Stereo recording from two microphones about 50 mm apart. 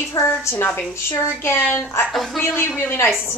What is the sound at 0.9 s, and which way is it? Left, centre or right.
Speech, left.